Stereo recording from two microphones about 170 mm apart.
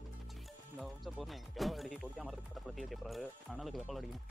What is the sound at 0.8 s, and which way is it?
Speech, centre (ahead or behind).